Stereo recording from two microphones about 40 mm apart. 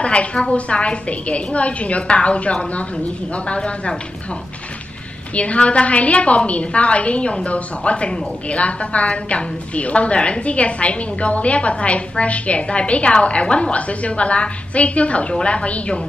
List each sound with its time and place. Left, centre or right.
0.0 s a woman's voice: left
5.3 s a woman's voice: left